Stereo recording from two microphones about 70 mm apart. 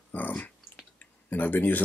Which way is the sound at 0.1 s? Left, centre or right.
Left.